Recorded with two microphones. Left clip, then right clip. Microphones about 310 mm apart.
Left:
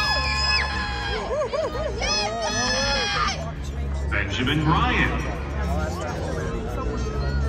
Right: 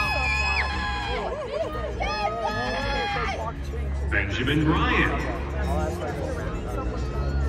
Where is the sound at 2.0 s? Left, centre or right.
Right.